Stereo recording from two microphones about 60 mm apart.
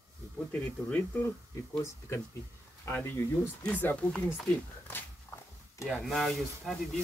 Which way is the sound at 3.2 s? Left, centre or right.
Left.